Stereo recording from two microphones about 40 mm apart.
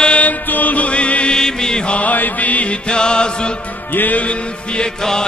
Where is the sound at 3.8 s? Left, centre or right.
Left.